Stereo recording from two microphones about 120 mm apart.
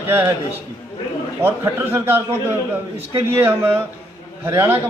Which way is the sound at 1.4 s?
20° right (ahead or behind).